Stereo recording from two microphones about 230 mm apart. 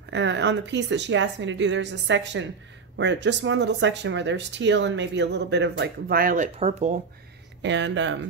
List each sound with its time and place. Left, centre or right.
0.1 s speech: right
7.6 s speech: right